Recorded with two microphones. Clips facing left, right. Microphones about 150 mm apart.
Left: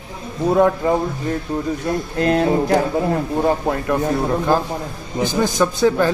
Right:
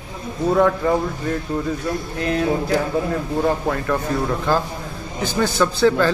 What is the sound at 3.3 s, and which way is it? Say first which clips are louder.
Speech: right 1 dB; 20° left (ahead or behind).